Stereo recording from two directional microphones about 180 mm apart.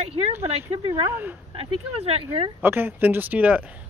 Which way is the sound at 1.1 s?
10° right (ahead or behind).